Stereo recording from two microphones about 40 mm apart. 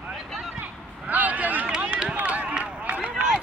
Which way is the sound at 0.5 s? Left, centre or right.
Right.